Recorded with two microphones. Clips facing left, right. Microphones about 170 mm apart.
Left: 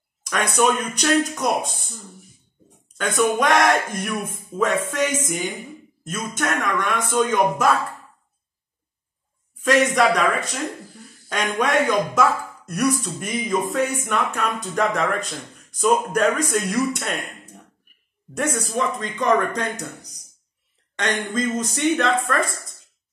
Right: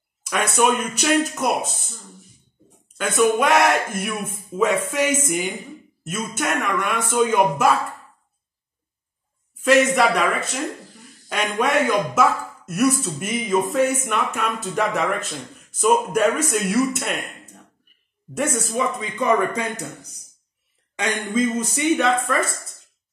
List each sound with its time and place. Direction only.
0.5 s speech: 5° right (ahead or behind)
3.0 s speech: 5° right (ahead or behind)
9.7 s speech: 5° right (ahead or behind)
11.6 s speech: 5° right (ahead or behind)
18.3 s speech: 5° right (ahead or behind)
20.9 s speech: 10° right (ahead or behind)